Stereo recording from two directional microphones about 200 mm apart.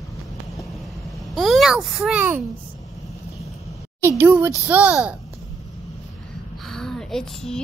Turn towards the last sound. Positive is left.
turn(degrees=5)  # may be behind; listen again after turning